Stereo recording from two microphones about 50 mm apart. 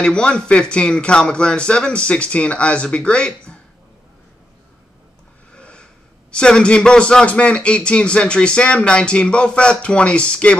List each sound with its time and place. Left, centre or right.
0.0 s speech: centre
5.5 s snort: left
6.3 s speech: centre